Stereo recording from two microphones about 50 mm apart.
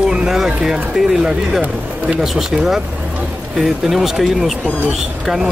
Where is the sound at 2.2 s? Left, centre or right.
Centre.